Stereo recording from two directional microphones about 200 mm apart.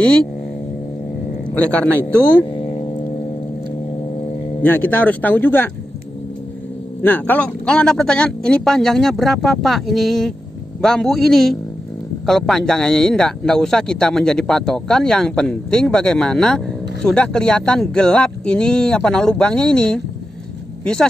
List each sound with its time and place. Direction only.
1.5 s speech: 5° left (ahead or behind)
4.6 s speech: 10° left (ahead or behind)
7.0 s speech: 10° left (ahead or behind)